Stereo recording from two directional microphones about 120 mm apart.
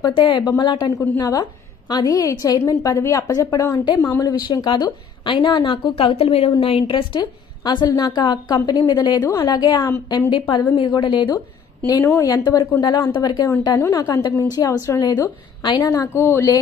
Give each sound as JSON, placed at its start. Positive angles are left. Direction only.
{"t": 0.0, "sound": "a woman's voice", "side_deg": 40}
{"t": 11.3, "sound": "a woman's voice", "side_deg": 30}
{"t": 16.1, "sound": "a woman's voice", "side_deg": 20}